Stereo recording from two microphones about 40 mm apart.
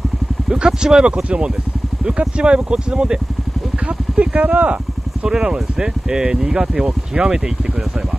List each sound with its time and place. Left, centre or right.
0.5 s speech: centre
4.4 s speech: right
5.2 s speech: centre